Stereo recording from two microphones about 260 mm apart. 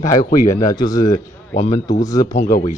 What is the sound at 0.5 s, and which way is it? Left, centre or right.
A man's voice, centre.